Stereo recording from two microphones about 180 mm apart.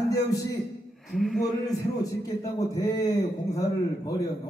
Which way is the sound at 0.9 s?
Centre (ahead or behind).